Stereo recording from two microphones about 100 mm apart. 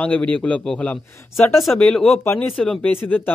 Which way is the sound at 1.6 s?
5° left (ahead or behind).